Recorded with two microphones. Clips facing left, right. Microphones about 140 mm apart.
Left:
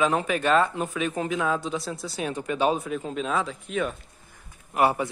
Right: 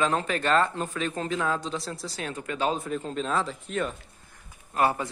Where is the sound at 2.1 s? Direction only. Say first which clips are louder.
Left 5 dB; 15° left (ahead or behind).